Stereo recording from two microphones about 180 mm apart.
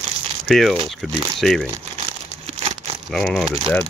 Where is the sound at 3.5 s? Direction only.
30° right (ahead or behind).